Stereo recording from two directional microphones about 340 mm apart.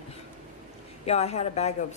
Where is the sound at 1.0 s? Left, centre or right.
Centre.